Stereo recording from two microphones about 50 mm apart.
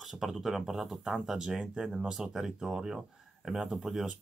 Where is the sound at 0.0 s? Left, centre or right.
Centre.